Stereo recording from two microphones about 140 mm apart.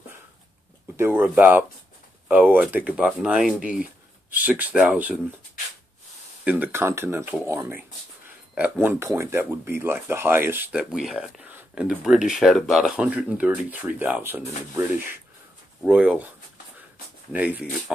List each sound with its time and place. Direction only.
0.9 s speech: 15° right (ahead or behind)
6.4 s speech: 10° right (ahead or behind)
15.8 s speech: 10° right (ahead or behind)
17.3 s speech: 10° right (ahead or behind)